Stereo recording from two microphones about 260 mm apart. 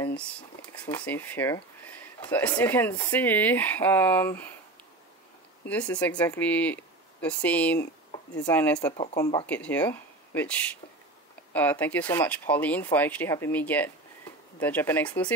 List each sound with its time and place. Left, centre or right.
0.0 s a sound: centre
0.7 s speech: centre
5.7 s speech: centre
9.5 s speech: centre